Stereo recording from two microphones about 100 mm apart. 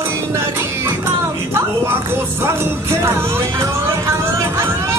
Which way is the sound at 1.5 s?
25° right (ahead or behind).